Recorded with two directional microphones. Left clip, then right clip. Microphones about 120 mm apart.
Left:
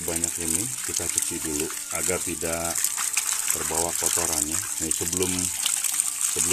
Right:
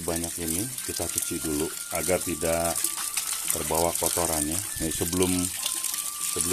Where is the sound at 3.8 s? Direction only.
50° right (ahead or behind).